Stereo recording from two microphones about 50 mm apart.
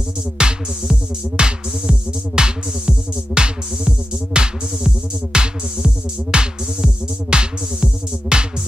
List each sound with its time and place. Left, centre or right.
0.4 s music: centre